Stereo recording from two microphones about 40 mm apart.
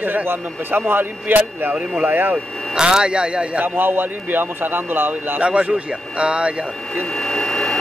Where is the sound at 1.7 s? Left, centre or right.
Right.